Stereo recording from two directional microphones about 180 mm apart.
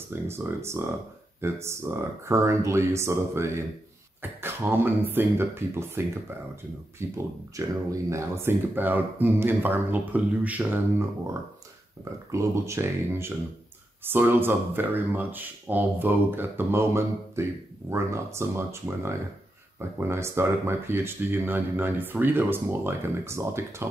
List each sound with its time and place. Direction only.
0.1 s speech: 15° right (ahead or behind)